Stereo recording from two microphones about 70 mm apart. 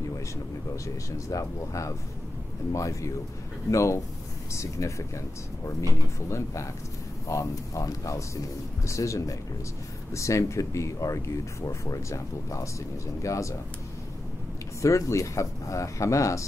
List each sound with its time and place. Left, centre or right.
0.8 s speech: left
6.2 s speech: left
14.8 s speech: left